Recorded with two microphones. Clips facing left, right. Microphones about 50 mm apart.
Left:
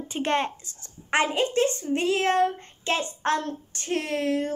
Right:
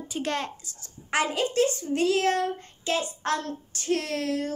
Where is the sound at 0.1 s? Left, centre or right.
Left.